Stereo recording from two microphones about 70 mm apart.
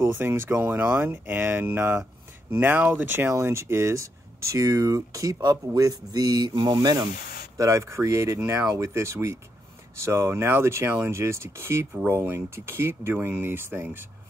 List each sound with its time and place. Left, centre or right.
0.0 s speech: right
3.3 s speech: right
7.5 s speech: right